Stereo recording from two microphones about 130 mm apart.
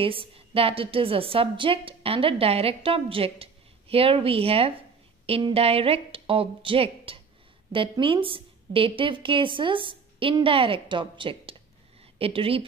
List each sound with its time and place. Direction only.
0.0 s a woman's voice: 45° right (ahead or behind)